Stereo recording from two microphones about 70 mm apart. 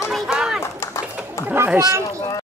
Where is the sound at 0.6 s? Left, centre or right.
Left.